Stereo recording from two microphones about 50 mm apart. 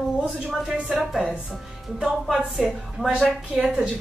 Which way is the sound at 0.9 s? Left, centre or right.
Centre.